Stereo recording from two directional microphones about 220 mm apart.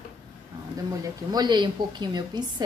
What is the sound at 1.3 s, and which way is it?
A woman's voice, 20° right (ahead or behind).